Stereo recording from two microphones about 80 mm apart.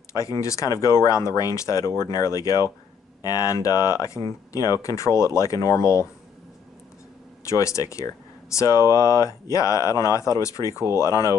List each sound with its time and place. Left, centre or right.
0.1 s speech: left
7.4 s speech: left